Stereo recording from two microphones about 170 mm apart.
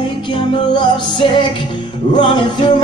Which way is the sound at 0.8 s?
30° left (ahead or behind).